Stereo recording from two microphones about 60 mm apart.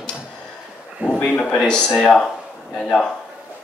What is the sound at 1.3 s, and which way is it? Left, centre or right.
Speech, centre.